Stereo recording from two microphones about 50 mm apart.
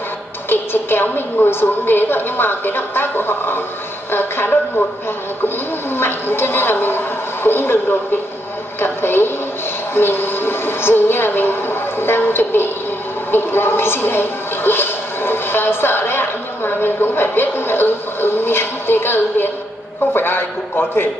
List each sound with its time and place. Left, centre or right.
0.5 s a woman's voice: left
5.9 s a sound: left
9.9 s a woman's voice: left